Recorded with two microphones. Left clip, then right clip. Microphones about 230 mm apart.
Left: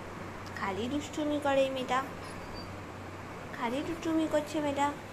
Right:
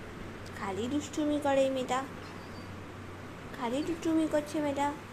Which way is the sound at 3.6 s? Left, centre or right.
Centre.